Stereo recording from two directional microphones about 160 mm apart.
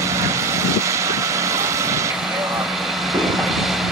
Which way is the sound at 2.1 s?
Centre (ahead or behind).